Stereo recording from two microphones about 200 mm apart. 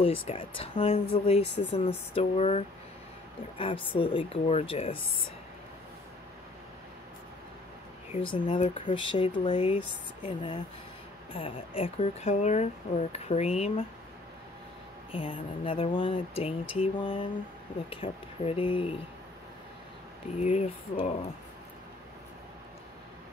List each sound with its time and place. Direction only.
0.0 s speech: 25° left (ahead or behind)
8.1 s speech: 30° left (ahead or behind)
15.0 s speech: 25° left (ahead or behind)
20.4 s speech: 40° left (ahead or behind)